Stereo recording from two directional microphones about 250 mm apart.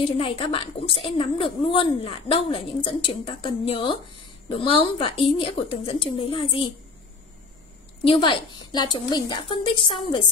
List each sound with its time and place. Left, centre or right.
0.0 s a woman's voice: left
8.0 s a woman's voice: centre